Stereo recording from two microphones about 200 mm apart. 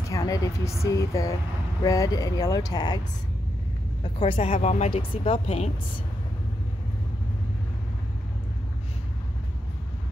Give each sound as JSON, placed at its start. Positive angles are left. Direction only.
{"t": 0.1, "sound": "speech", "side_deg": 15}
{"t": 4.0, "sound": "speech", "side_deg": 25}